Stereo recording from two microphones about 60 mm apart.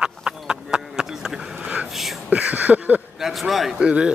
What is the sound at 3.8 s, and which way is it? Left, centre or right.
Speech, centre.